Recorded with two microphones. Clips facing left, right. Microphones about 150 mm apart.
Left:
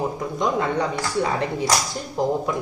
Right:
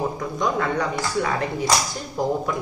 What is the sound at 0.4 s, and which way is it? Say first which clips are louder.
Speech: left 1 dB; 25° left (ahead or behind).